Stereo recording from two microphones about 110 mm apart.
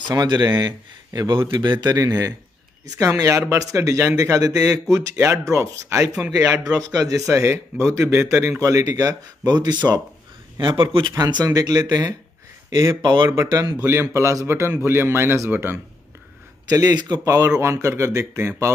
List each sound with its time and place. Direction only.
0.0 s speech: 40° right (ahead or behind)
12.6 s a sound: 30° right (ahead or behind)
13.0 s speech: 45° right (ahead or behind)
13.3 s speech: 30° right (ahead or behind)
16.6 s speech: 35° right (ahead or behind)